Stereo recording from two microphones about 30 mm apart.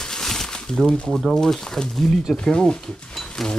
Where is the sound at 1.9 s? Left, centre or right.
Centre.